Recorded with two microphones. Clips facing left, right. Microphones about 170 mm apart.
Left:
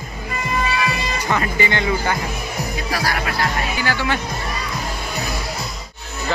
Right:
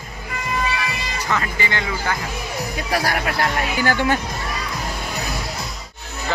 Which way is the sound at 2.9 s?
50° right (ahead or behind).